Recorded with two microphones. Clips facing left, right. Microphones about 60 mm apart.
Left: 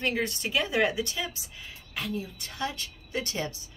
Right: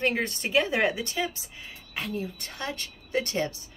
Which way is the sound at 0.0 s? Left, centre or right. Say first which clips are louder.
Right 2 dB; right.